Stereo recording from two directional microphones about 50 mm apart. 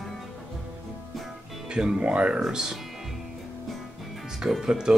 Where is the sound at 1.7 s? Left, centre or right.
Centre.